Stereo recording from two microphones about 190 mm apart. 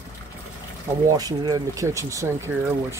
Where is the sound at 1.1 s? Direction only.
20° right (ahead or behind).